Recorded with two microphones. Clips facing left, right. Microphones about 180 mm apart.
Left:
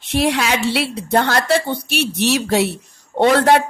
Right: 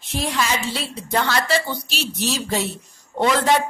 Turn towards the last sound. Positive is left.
turn(degrees=60)  # may be behind; listen again after turning